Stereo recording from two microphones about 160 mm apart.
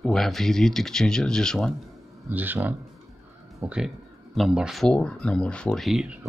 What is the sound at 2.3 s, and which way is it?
Speech, 10° right (ahead or behind).